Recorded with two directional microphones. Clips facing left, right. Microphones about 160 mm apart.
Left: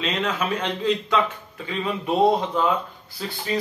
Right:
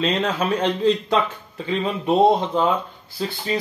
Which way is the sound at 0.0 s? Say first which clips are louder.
Right 4 dB; 35° right (ahead or behind).